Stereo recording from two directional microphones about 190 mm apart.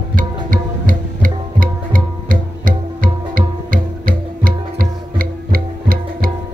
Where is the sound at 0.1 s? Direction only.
45° right (ahead or behind).